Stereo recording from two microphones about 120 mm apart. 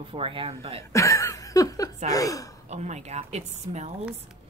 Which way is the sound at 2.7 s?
70° right (ahead or behind).